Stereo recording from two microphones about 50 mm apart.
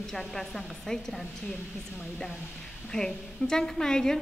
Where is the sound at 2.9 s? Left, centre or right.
Centre.